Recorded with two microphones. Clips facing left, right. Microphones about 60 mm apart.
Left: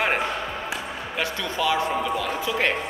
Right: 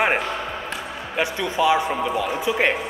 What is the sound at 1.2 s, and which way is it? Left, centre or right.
A man's voice, centre.